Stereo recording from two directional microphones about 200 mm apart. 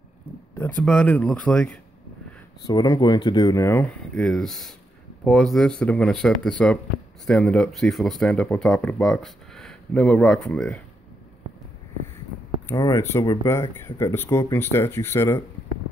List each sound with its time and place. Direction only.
0.8 s speech: 5° left (ahead or behind)
2.6 s speech: 20° left (ahead or behind); by 10.8 s centre (ahead or behind)
12.6 s speech: 15° left (ahead or behind)